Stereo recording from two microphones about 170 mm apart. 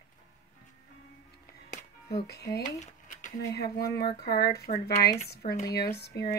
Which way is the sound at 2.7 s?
45° left (ahead or behind).